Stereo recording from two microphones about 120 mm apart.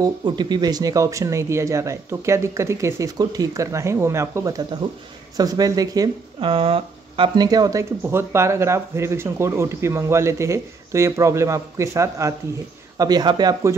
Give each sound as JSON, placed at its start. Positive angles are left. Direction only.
{"t": 0.0, "sound": "speech", "side_deg": -40}
{"t": 6.4, "sound": "speech", "side_deg": -50}
{"t": 7.3, "sound": "speech", "side_deg": -30}
{"t": 8.0, "sound": "speech", "side_deg": -20}